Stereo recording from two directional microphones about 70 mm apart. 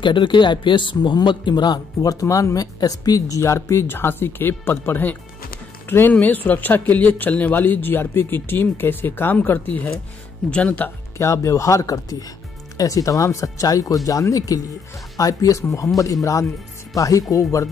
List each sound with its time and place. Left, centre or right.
0.4 s speech: left
10.5 s speech: centre
11.1 s speech: left